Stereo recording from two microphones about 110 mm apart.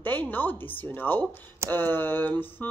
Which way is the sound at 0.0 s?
15° left (ahead or behind).